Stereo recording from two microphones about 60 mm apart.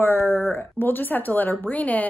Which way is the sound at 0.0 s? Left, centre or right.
Left.